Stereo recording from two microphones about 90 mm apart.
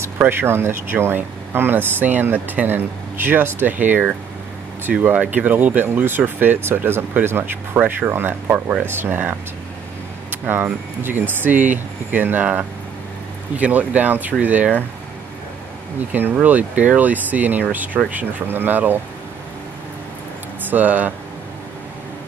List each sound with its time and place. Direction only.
0.2 s speech: 25° right (ahead or behind)
16.1 s speech: 20° right (ahead or behind)
20.7 s speech: 20° right (ahead or behind)